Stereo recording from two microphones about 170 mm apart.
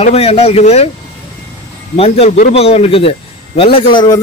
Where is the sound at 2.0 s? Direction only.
35° left (ahead or behind).